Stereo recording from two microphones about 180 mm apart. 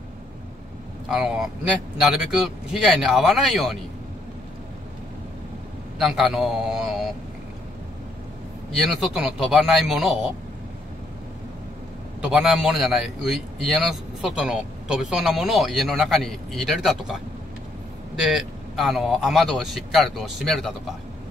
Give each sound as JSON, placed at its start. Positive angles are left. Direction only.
{"t": 1.0, "sound": "a man's voice", "side_deg": 0}
{"t": 5.9, "sound": "a man's voice", "side_deg": 0}
{"t": 9.0, "sound": "a man's voice", "side_deg": 0}
{"t": 12.2, "sound": "a man's voice", "side_deg": -5}